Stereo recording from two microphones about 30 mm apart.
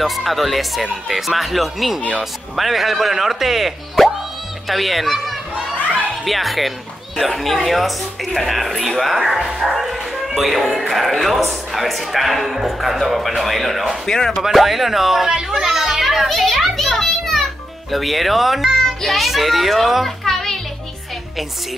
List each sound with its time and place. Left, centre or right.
0.0 s speech: centre
6.2 s speech: centre
14.0 s speech: centre
14.5 s speech: centre
15.2 s a child's voice: right
15.6 s speech: centre
16.3 s speech: centre
16.8 s children playing: centre
17.9 s speech: centre
20.2 s music: centre